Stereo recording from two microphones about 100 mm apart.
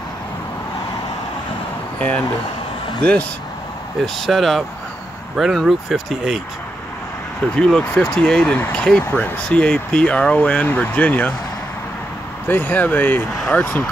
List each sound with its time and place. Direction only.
2.0 s speech: 15° left (ahead or behind)
4.0 s speech: centre (ahead or behind)
7.5 s speech: 10° left (ahead or behind)
12.4 s speech: 20° left (ahead or behind)